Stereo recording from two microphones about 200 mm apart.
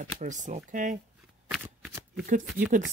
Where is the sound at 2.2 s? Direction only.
45° right (ahead or behind).